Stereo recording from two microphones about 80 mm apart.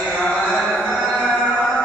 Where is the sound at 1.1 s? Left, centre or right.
Centre.